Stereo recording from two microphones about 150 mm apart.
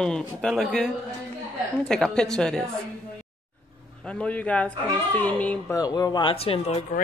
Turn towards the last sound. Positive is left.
turn(degrees=40)  # may be behind; listen again after turning